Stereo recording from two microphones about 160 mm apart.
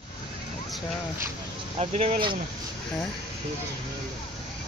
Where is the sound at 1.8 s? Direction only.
40° right (ahead or behind).